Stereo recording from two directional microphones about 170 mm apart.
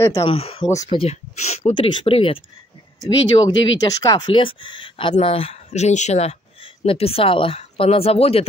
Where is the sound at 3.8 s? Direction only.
20° left (ahead or behind).